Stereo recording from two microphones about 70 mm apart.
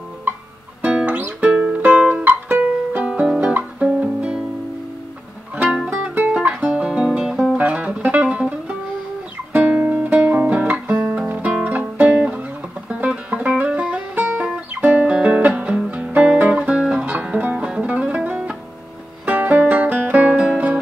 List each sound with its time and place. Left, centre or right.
0.8 s music: right
5.9 s music: right
6.3 s guitar: centre
7.1 s music: centre
7.5 s music: right
9.5 s guitar: right
14.8 s music: right